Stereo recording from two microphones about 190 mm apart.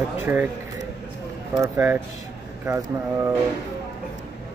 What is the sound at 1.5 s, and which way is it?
Speech, 15° right (ahead or behind).